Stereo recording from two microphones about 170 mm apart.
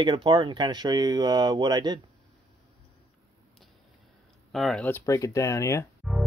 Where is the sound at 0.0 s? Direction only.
30° right (ahead or behind).